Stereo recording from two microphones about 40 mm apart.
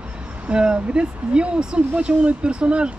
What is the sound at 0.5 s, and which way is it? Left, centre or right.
Speech, right.